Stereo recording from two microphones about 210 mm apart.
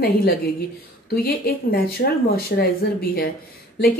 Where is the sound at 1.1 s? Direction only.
45° left (ahead or behind).